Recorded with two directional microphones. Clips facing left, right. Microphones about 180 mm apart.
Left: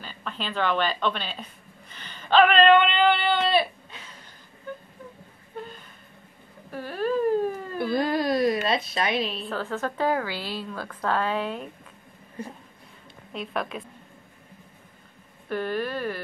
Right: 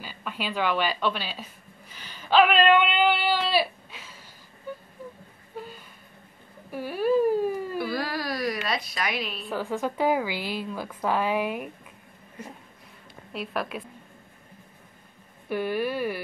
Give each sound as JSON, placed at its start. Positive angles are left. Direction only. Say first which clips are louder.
{"t": 0.0, "sound": "speech", "louder": "right 1 dB", "side_deg": -10}
{"t": 4.7, "sound": "vehicle", "louder": "even", "side_deg": -10}
{"t": 5.6, "sound": "a sound", "louder": "left 1 dB", "side_deg": -5}
{"t": 7.8, "sound": "speech", "louder": "left 5 dB", "side_deg": 20}
{"t": 9.4, "sound": "a woman's voice", "louder": "right 1 dB", "side_deg": -10}
{"t": 12.4, "sound": "a sound", "louder": "left 4 dB", "side_deg": 30}
{"t": 13.3, "sound": "a woman's voice", "louder": "even", "side_deg": -5}
{"t": 15.4, "sound": "a woman's voice", "louder": "right 1 dB", "side_deg": -10}